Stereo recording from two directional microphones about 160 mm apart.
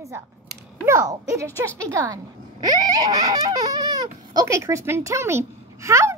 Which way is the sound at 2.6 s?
25° right (ahead or behind).